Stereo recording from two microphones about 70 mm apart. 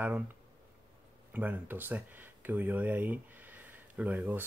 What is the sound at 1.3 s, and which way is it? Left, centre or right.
Speech, right.